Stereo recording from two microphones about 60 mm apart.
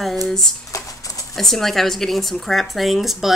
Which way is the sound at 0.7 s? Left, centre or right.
Left.